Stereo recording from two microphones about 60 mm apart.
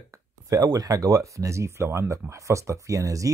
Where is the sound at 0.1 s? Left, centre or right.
Right.